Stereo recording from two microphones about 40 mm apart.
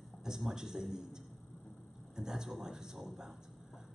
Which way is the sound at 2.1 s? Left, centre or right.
Centre.